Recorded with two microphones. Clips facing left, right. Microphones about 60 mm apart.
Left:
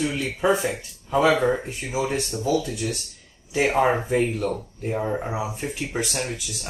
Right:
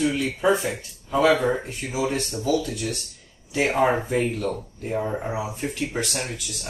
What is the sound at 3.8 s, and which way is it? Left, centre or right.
Speech, centre.